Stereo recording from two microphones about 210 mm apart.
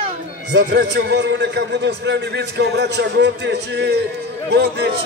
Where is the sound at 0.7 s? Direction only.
50° right (ahead or behind).